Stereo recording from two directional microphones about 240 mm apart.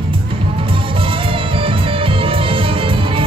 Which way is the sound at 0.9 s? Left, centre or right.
Right.